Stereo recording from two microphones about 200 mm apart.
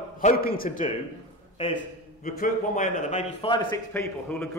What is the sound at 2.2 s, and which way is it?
A man's voice, 45° left (ahead or behind).